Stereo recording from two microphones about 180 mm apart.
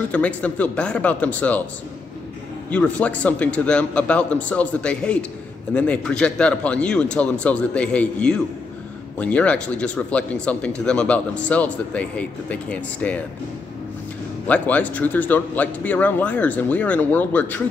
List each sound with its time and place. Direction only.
0.1 s speech: 5° left (ahead or behind)
2.7 s speech: 5° left (ahead or behind)
14.5 s speech: 10° left (ahead or behind)